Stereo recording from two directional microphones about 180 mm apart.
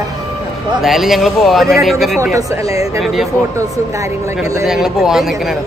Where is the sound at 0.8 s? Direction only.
Centre (ahead or behind).